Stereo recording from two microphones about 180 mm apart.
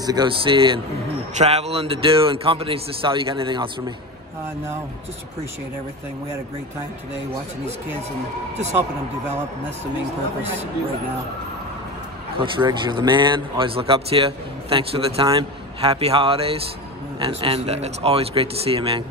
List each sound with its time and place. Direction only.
0.0 s a man's voice: 20° right (ahead or behind)
12.4 s speech: 25° right (ahead or behind)